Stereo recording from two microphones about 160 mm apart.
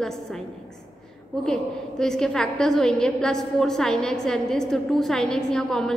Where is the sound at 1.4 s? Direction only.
5° left (ahead or behind).